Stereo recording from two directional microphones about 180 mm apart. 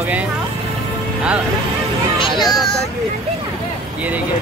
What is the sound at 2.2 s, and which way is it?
Speech, 25° left (ahead or behind).